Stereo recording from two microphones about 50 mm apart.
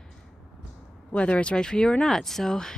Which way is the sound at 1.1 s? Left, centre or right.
Left.